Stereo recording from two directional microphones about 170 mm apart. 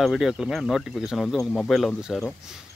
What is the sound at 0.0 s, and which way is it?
Speech, centre (ahead or behind).